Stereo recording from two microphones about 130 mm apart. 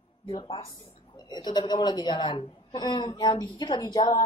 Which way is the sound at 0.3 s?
35° left (ahead or behind).